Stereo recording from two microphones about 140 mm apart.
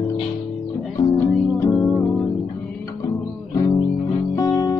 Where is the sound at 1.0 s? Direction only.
20° left (ahead or behind).